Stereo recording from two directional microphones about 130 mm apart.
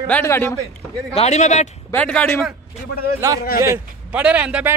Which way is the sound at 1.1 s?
60° left (ahead or behind).